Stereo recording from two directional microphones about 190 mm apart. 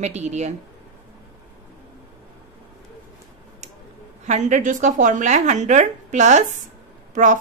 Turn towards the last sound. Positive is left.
turn(degrees=-40)  # may be behind; listen again after turning